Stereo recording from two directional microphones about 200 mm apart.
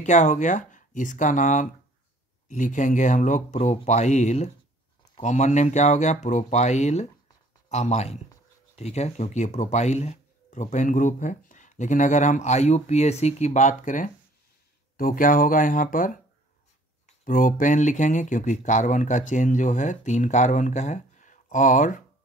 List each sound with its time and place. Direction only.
0.0 s speech: 35° left (ahead or behind)